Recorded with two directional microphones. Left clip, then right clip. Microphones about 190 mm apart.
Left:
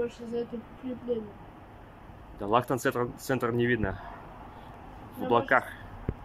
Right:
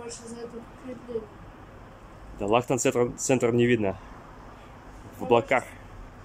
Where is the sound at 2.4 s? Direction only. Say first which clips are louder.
Right 3 dB; 10° right (ahead or behind).